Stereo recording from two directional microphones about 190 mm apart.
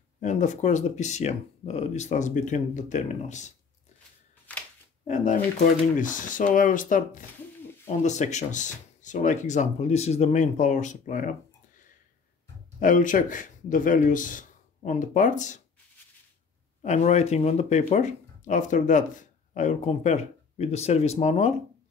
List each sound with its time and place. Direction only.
0.2 s speech: 40° left (ahead or behind)
4.5 s a sound: 10° left (ahead or behind)
5.0 s speech: 40° left (ahead or behind)
12.8 s speech: 45° left (ahead or behind)
16.8 s speech: 35° left (ahead or behind)